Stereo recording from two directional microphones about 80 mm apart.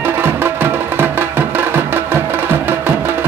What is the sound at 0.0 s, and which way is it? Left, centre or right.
Music, right.